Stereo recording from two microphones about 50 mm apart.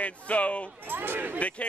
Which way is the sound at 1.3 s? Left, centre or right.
Left.